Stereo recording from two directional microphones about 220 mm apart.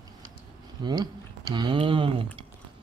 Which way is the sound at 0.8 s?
20° right (ahead or behind).